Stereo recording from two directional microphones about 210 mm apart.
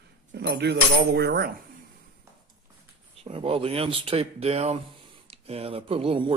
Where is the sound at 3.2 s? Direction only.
25° right (ahead or behind).